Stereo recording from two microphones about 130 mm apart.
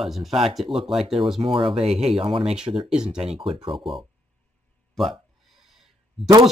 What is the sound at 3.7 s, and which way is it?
Speech, centre (ahead or behind).